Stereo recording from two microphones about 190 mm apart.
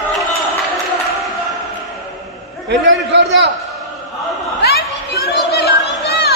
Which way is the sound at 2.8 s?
75° right (ahead or behind).